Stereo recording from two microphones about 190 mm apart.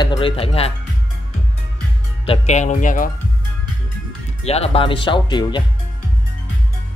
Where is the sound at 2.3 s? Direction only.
35° left (ahead or behind).